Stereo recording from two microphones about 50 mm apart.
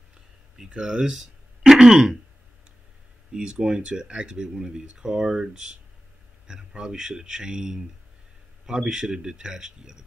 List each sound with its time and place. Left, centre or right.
0.7 s speech: centre
3.3 s speech: centre